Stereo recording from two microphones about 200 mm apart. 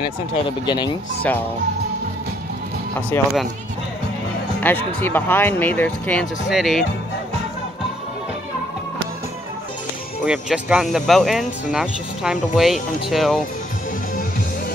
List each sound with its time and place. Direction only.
0.3 s speech: 20° left (ahead or behind)
3.1 s speech: centre (ahead or behind)
4.6 s speech: 10° left (ahead or behind)
10.2 s speech: 5° right (ahead or behind)